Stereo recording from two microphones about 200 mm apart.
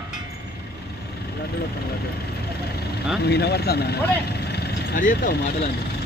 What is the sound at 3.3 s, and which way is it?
Speech, 55° left (ahead or behind).